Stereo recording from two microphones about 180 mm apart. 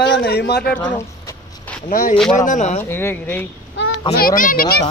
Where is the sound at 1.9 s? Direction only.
50° left (ahead or behind).